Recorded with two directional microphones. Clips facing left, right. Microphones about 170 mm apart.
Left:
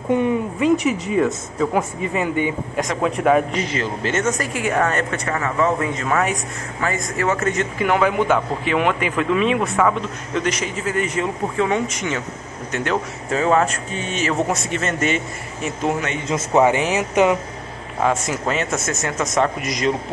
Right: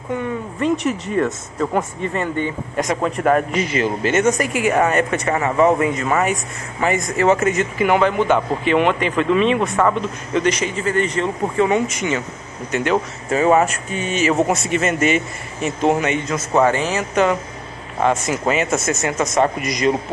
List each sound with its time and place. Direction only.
0.6 s speech: centre (ahead or behind)
3.5 s speech: 15° right (ahead or behind)
6.8 s speech: 20° right (ahead or behind)
7.4 s speech: 5° right (ahead or behind)
16.3 s speech: 15° left (ahead or behind)
18.0 s speech: 5° right (ahead or behind)